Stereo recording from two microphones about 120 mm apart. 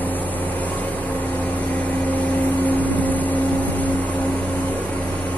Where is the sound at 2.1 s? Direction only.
15° left (ahead or behind).